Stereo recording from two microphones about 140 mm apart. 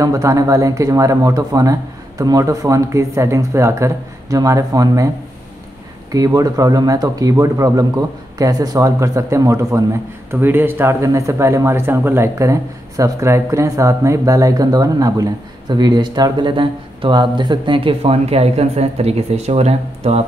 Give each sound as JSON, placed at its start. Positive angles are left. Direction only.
{"t": 0.0, "sound": "speech", "side_deg": -25}
{"t": 6.1, "sound": "speech", "side_deg": -25}